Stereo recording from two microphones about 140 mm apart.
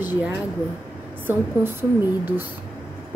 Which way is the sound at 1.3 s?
15° right (ahead or behind).